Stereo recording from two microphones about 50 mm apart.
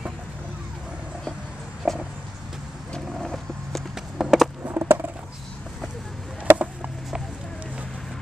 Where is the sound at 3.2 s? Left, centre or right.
Centre.